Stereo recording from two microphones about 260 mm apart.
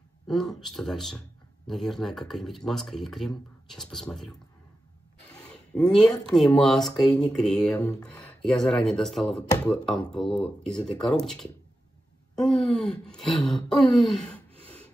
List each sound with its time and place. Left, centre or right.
0.3 s speech: centre
5.4 s a sound: centre
6.3 s speech: centre